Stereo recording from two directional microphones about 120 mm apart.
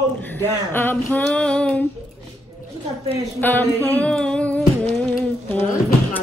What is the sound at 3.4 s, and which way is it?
Female singing, 15° left (ahead or behind).